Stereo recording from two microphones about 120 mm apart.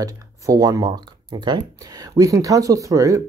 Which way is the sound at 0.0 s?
30° right (ahead or behind).